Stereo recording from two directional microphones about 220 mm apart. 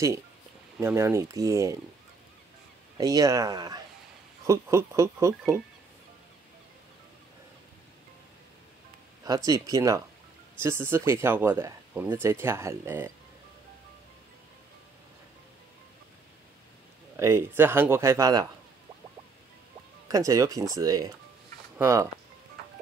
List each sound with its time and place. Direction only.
0.7 s speech: 10° right (ahead or behind)
3.0 s speech: 15° right (ahead or behind)
9.2 s speech: 15° right (ahead or behind)
17.2 s speech: 10° right (ahead or behind)
20.1 s speech: 15° right (ahead or behind)